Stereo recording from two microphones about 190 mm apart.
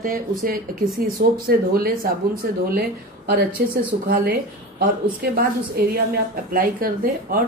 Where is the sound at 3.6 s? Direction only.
55° right (ahead or behind).